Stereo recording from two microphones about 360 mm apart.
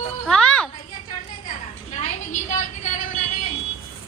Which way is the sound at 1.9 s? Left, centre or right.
Centre.